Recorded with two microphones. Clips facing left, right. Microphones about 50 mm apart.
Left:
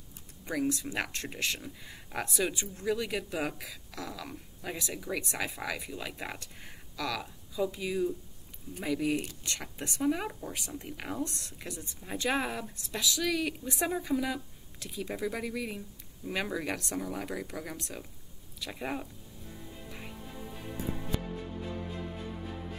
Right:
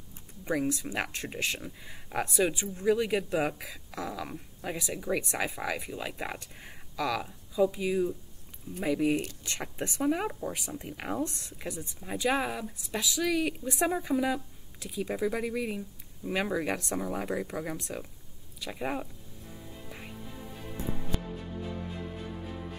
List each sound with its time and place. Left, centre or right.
0.5 s speech: centre
11.2 s speech: right
12.0 s speech: centre